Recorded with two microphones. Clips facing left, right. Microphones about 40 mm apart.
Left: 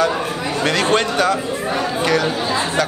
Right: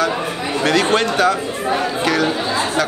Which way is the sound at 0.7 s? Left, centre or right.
Centre.